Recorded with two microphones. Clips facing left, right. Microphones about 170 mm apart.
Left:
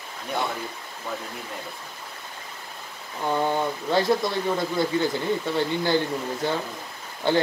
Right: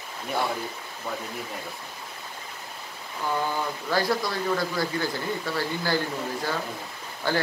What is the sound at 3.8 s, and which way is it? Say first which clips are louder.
A man's voice: left 3 dB; 25° left (ahead or behind).